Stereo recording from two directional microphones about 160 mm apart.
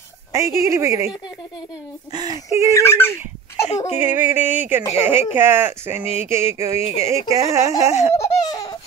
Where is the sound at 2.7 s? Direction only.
15° left (ahead or behind).